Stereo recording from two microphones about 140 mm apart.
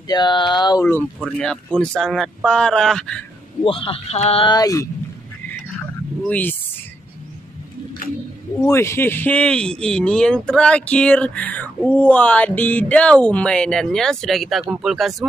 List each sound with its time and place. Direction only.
0.1 s speech: 30° left (ahead or behind)
1.4 s speech: 5° left (ahead or behind)
3.6 s speech: 40° left (ahead or behind)
4.5 s speech: 25° left (ahead or behind)
6.2 s speech: 10° left (ahead or behind)
8.6 s speech: 20° left (ahead or behind); by 15.2 s centre (ahead or behind)